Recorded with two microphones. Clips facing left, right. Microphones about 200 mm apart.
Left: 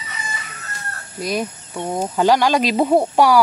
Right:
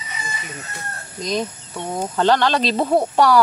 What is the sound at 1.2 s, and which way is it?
Speech, 10° left (ahead or behind).